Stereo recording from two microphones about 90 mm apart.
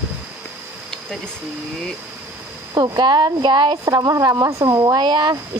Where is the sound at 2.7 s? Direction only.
45° right (ahead or behind).